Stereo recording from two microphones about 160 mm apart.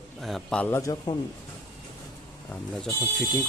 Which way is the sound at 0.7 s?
20° left (ahead or behind).